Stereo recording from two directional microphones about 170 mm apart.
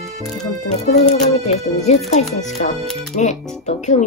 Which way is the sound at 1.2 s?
40° left (ahead or behind).